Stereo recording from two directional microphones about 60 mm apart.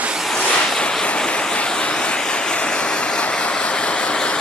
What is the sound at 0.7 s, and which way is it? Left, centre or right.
Vehicle, centre.